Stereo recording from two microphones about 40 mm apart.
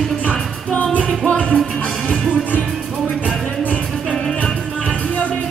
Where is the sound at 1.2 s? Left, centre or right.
Left.